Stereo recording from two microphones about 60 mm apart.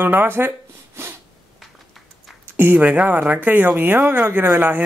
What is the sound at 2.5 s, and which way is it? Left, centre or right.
A man's voice, right.